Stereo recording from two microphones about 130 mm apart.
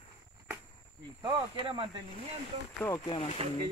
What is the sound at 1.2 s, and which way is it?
Cricket, 45° right (ahead or behind).